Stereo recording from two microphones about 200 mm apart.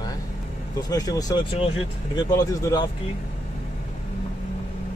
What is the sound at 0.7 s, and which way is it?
Speech, 20° left (ahead or behind).